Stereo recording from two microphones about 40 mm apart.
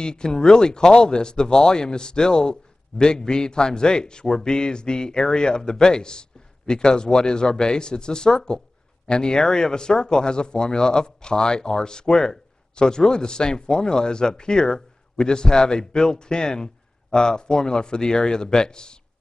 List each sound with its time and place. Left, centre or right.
0.0 s speech: centre